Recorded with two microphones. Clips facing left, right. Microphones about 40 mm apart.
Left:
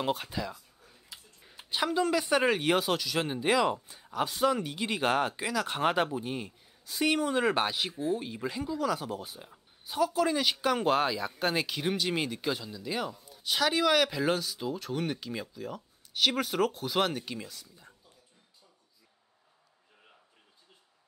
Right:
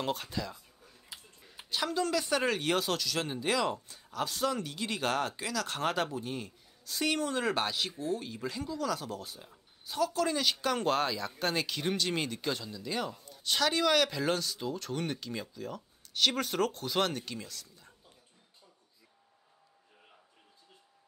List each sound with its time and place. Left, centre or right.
0.0 s speech: centre
1.1 s a sound: centre
1.7 s speech: centre